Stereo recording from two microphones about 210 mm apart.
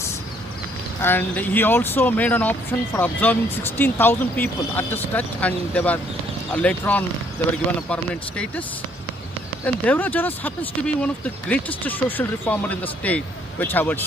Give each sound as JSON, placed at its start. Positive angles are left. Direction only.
{"t": 1.0, "sound": "speech", "side_deg": 10}
{"t": 9.8, "sound": "speech", "side_deg": 10}